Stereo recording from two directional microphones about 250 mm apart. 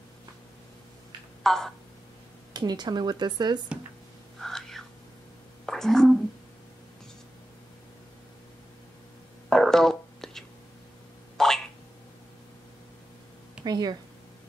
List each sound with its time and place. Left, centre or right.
1.4 s speech: centre
2.5 s speech: centre
4.4 s whispering: centre
5.7 s speech: centre
9.5 s a sound: centre
13.7 s speech: centre